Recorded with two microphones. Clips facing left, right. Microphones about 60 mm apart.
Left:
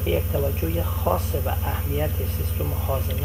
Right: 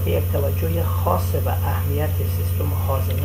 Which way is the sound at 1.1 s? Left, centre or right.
Right.